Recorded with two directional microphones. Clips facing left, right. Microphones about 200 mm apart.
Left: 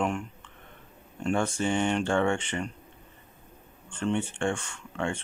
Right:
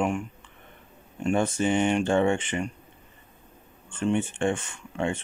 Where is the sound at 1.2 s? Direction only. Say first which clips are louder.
Right 3 dB; 20° right (ahead or behind).